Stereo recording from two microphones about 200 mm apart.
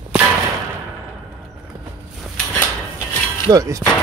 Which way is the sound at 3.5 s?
15° right (ahead or behind).